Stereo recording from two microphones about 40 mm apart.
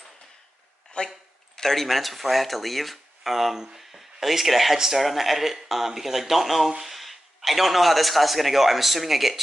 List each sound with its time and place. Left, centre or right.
1.0 s speech: left
1.6 s speech: centre